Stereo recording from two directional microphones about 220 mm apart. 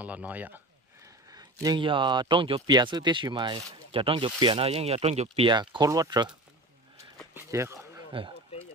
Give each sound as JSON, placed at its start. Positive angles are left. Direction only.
{"t": 0.0, "sound": "speech", "side_deg": -5}
{"t": 7.3, "sound": "speech", "side_deg": -10}